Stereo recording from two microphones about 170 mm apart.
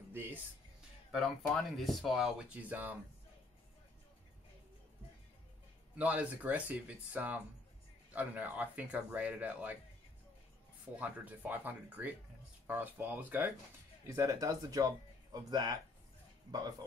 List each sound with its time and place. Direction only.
0.1 s speech: 10° right (ahead or behind)
1.1 s speech: centre (ahead or behind)
5.9 s speech: 10° right (ahead or behind)
11.0 s speech: 10° right (ahead or behind); by 15.7 s 25° right (ahead or behind)